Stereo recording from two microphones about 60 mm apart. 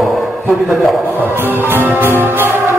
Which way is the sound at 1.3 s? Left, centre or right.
Right.